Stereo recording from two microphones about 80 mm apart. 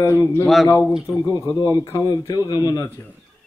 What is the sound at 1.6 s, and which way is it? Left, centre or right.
A man's voice, left.